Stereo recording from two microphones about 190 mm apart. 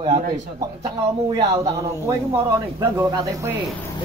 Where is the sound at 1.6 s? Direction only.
15° right (ahead or behind).